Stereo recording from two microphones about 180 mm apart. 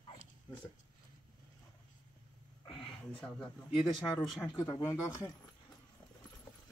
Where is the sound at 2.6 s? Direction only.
30° left (ahead or behind).